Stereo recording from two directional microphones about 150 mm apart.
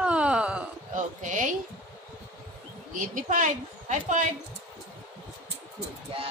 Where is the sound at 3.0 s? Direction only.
60° right (ahead or behind).